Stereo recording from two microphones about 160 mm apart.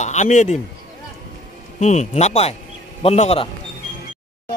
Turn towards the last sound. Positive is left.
turn(degrees=40)  # may be behind; listen again after turning